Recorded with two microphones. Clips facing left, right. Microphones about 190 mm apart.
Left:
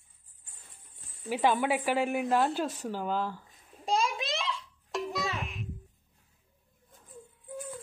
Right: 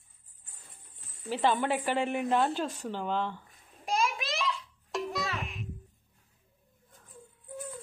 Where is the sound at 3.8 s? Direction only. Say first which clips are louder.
Left 1 dB; 30° left (ahead or behind).